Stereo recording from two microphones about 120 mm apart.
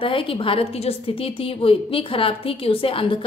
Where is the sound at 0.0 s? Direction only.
50° left (ahead or behind).